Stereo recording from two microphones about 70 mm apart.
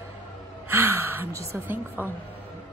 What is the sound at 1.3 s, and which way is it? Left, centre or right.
Speech, right.